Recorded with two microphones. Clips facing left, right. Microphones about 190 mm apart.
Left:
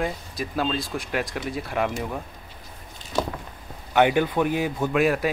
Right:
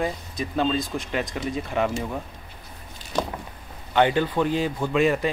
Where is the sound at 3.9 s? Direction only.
10° left (ahead or behind).